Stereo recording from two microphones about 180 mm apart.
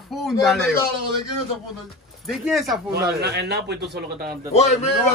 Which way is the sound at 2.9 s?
65° right (ahead or behind).